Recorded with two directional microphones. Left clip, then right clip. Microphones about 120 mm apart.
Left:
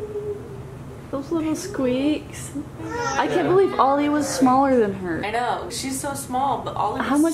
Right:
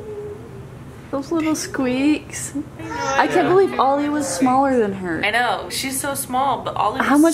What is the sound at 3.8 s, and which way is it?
A woman's voice, 10° right (ahead or behind).